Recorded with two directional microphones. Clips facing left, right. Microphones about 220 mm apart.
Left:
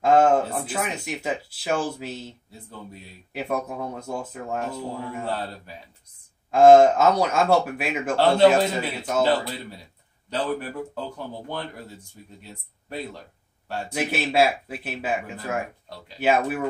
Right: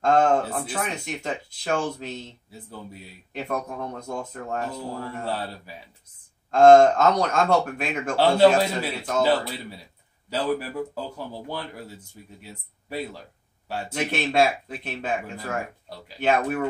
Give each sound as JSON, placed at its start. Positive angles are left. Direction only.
{"t": 0.0, "sound": "speech", "side_deg": 5}
{"t": 2.5, "sound": "a man's voice", "side_deg": -5}
{"t": 6.5, "sound": "a man's voice", "side_deg": 5}
{"t": 13.7, "sound": "speech", "side_deg": -5}
{"t": 13.9, "sound": "speech", "side_deg": 5}